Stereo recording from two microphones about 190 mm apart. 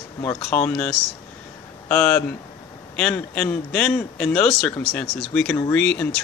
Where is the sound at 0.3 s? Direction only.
5° left (ahead or behind).